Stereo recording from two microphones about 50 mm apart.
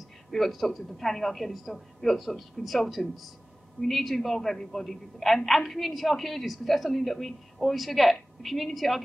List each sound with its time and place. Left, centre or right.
0.3 s a woman's voice: centre